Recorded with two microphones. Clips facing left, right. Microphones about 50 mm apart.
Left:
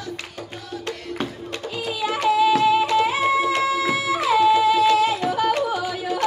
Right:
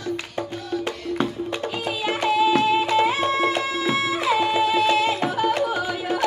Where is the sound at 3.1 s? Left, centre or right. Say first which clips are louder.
Left 1 dB; right.